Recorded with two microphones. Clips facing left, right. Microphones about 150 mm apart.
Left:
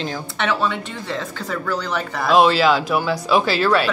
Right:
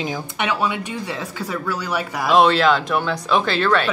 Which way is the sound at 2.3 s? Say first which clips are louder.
Even; centre (ahead or behind).